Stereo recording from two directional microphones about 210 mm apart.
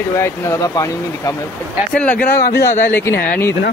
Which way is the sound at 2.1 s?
45° left (ahead or behind).